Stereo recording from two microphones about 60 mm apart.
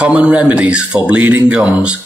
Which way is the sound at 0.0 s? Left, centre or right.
Right.